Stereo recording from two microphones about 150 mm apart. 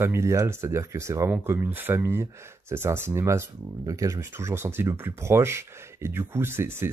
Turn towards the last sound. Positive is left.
turn(degrees=-15)  # may be behind; listen again after turning